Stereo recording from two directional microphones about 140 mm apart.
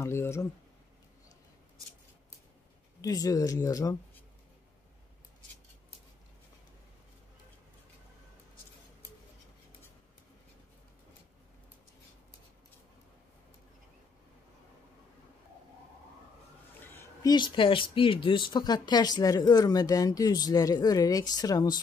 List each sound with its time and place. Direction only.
0.0 s speech: 20° left (ahead or behind)
3.0 s speech: 25° left (ahead or behind)
16.8 s a sound: 15° left (ahead or behind)
17.2 s speech: 30° left (ahead or behind)